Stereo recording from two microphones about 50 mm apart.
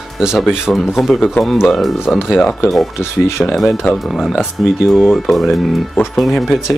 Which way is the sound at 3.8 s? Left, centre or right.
Centre.